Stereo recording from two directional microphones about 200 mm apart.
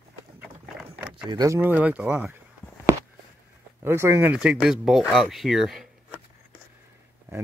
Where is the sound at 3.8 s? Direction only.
10° right (ahead or behind).